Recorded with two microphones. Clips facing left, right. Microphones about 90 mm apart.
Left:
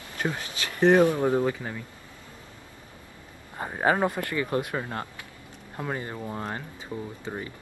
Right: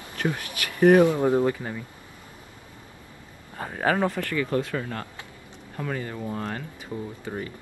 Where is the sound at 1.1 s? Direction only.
15° right (ahead or behind).